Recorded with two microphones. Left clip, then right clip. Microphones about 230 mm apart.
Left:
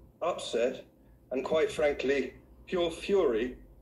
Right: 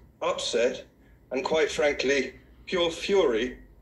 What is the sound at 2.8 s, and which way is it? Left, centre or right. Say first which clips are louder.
Speech: right 5 dB; centre.